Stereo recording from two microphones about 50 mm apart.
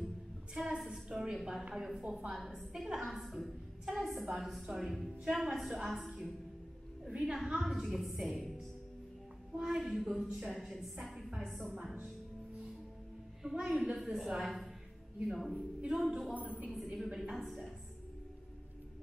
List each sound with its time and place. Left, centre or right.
0.6 s a sound: centre
1.0 s a woman's voice: centre
7.1 s a woman's voice: centre
7.5 s a woman's voice: centre
11.7 s a woman's voice: centre
13.4 s a woman's voice: centre
15.5 s speech: right
16.0 s a woman's voice: centre
16.3 s speech: right
16.7 s a woman's voice: centre